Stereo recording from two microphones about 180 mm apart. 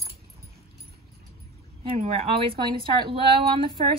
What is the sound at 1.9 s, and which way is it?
Speech, 40° right (ahead or behind).